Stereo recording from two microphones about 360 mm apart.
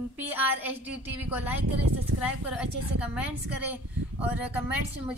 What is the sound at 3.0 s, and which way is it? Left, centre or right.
A woman's voice, centre.